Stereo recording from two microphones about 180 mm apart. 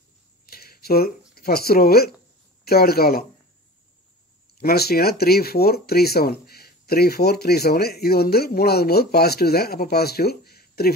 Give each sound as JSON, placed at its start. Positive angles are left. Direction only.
{"t": 0.5, "sound": "a sound", "side_deg": 55}
{"t": 2.6, "sound": "speech", "side_deg": 60}
{"t": 4.6, "sound": "speech", "side_deg": 60}